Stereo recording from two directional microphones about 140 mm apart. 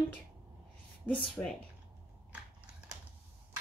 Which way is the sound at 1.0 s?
10° left (ahead or behind).